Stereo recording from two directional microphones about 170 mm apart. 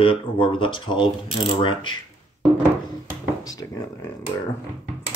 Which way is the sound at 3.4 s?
20° left (ahead or behind).